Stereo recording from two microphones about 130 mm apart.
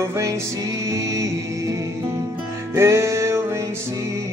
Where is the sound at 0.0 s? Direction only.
25° right (ahead or behind).